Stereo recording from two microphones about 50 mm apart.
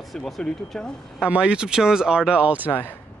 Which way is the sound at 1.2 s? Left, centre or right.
Right.